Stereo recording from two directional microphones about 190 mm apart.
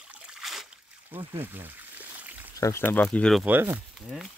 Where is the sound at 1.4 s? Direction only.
10° right (ahead or behind).